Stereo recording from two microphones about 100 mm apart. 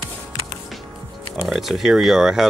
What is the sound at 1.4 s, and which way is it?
Speech, centre (ahead or behind).